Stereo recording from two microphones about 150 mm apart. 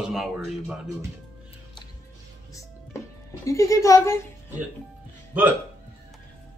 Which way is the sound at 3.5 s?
20° left (ahead or behind).